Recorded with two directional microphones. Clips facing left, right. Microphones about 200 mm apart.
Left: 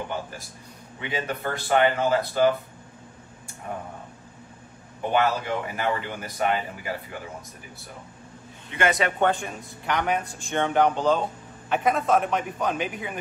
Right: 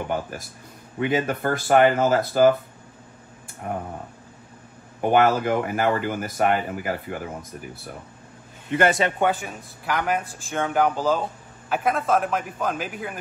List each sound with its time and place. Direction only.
0.9 s speech: 45° right (ahead or behind)
5.1 s speech: 50° right (ahead or behind)
8.7 s speech: 35° right (ahead or behind)
9.2 s a man's voice: 5° right (ahead or behind)